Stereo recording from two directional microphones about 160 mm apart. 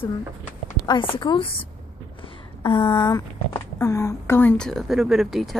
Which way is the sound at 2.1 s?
30° left (ahead or behind).